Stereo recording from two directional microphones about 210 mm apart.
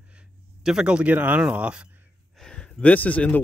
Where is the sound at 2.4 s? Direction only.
5° left (ahead or behind).